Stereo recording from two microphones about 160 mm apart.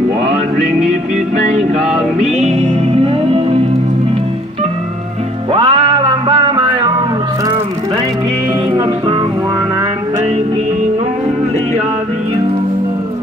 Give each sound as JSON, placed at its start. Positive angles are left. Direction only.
{"t": 1.8, "sound": "music", "side_deg": -45}
{"t": 5.5, "sound": "music", "side_deg": -35}
{"t": 8.7, "sound": "music", "side_deg": -30}